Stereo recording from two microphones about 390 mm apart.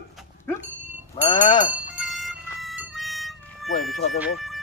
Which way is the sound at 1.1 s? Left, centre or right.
Centre.